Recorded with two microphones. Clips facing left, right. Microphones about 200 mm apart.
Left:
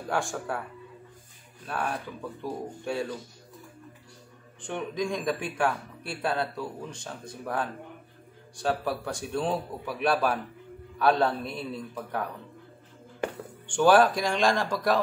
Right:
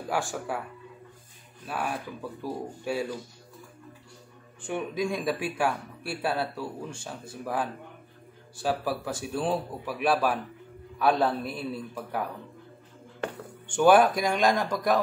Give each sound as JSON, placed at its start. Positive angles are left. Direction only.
{"t": 0.1, "sound": "a man's voice", "side_deg": -5}
{"t": 1.7, "sound": "speech", "side_deg": -5}
{"t": 4.6, "sound": "a man's voice", "side_deg": -10}
{"t": 13.9, "sound": "a man's voice", "side_deg": 0}
{"t": 14.5, "sound": "a man's voice", "side_deg": -20}